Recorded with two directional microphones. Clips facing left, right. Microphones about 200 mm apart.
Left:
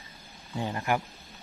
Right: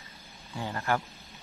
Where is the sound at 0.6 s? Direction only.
15° left (ahead or behind).